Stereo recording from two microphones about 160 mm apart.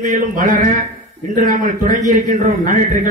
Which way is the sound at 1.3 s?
55° right (ahead or behind).